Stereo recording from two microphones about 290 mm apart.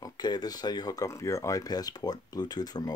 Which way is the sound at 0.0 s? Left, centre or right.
Centre.